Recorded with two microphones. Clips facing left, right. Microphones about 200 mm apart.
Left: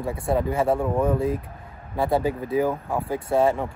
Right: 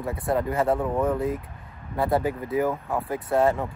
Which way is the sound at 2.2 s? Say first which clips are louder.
Left 2 dB; 30° left (ahead or behind).